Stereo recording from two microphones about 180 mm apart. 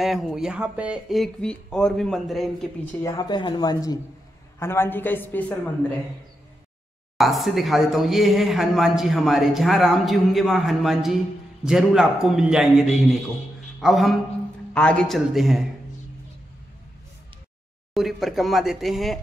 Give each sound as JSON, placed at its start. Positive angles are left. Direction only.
{"t": 0.0, "sound": "speech", "side_deg": 0}
{"t": 3.0, "sound": "a woman's voice", "side_deg": 20}
{"t": 7.2, "sound": "a man's voice", "side_deg": 0}
{"t": 17.9, "sound": "speech", "side_deg": 0}